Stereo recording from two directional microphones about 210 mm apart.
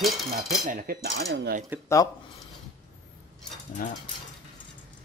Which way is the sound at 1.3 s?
50° right (ahead or behind).